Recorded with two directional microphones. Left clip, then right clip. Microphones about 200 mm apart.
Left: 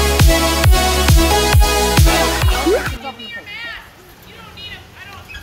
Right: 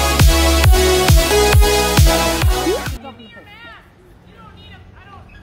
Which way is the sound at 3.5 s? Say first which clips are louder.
Left 10 dB; 30° right (ahead or behind).